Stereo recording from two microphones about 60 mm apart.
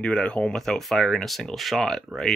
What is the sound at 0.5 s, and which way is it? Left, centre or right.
Speech, centre.